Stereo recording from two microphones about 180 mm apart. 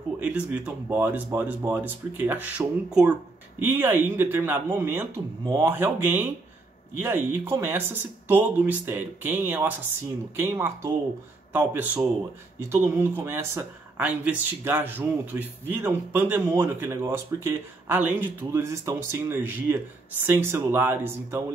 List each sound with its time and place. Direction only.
0.2 s speech: 5° right (ahead or behind)